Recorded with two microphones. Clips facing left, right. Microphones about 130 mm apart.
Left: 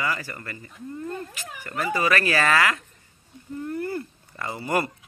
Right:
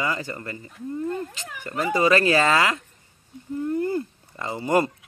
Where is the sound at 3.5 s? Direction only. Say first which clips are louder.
Right 5 dB; 20° right (ahead or behind).